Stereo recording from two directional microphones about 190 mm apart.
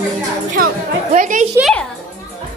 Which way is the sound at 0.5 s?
45° right (ahead or behind).